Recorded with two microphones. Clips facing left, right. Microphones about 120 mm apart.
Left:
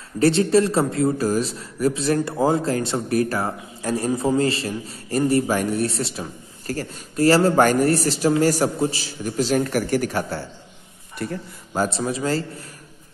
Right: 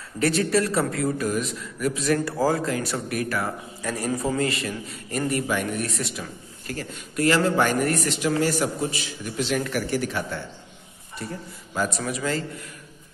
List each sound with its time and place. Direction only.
0.2 s a man's voice: 25° left (ahead or behind)
11.2 s speech: 65° left (ahead or behind)
11.7 s a man's voice: 35° left (ahead or behind)